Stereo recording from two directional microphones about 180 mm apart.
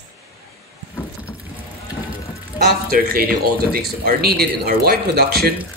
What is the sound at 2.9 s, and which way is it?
Speech, 55° right (ahead or behind).